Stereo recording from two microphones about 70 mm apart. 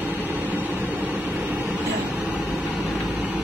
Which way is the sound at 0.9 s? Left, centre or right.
Right.